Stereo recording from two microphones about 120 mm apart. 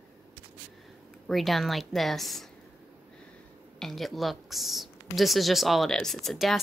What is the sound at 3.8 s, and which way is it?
Speech, centre (ahead or behind).